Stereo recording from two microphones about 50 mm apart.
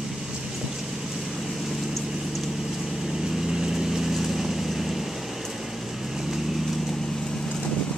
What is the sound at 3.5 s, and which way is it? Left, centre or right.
Vehicle, centre.